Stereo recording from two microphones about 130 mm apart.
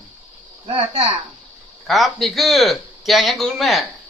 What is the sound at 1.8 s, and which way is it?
A man's voice, centre (ahead or behind).